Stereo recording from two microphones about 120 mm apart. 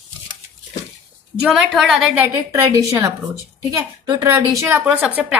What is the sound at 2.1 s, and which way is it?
A woman's voice, 25° right (ahead or behind).